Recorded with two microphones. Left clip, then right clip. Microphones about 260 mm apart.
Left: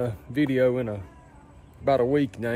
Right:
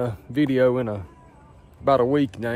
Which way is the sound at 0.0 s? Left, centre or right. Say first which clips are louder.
Right 2 dB; centre.